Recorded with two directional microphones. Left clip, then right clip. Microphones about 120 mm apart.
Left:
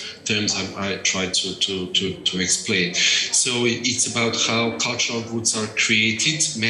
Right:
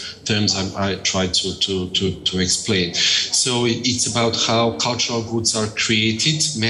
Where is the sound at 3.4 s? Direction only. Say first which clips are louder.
Right 2 dB; 45° left (ahead or behind).